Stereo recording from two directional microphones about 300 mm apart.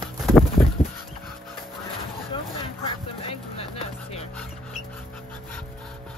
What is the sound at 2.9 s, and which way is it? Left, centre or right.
Vehicle, centre.